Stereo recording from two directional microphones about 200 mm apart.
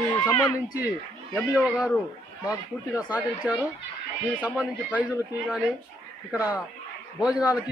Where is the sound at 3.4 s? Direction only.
5° right (ahead or behind).